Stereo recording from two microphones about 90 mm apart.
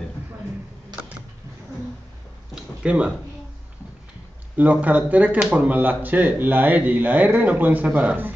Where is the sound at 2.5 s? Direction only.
10° right (ahead or behind).